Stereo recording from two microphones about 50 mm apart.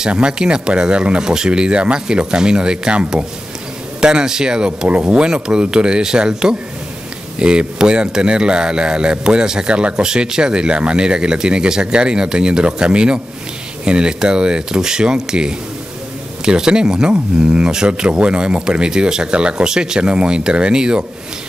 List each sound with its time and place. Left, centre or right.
0.0 s a man's voice: centre
4.8 s a man's voice: right